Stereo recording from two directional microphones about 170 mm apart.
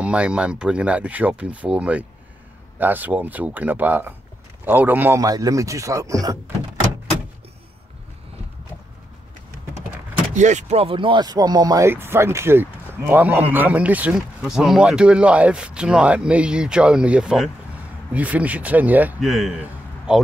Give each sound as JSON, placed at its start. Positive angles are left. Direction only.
{"t": 0.0, "sound": "a man's voice", "side_deg": -5}
{"t": 10.3, "sound": "speech", "side_deg": -45}